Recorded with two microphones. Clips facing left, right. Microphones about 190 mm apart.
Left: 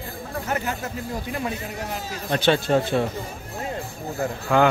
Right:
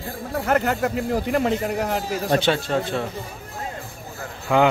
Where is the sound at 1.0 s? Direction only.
70° right (ahead or behind).